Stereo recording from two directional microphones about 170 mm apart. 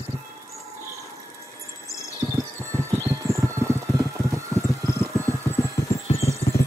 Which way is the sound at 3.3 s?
15° right (ahead or behind).